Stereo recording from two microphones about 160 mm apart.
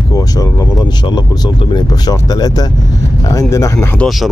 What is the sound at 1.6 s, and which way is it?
Speech, 25° left (ahead or behind).